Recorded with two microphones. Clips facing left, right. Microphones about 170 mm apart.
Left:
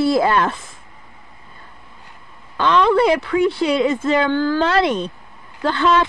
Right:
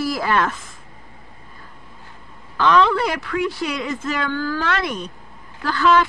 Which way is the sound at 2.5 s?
25° left (ahead or behind).